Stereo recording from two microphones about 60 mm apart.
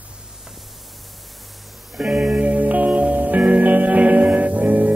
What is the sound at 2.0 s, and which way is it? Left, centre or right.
Music, centre.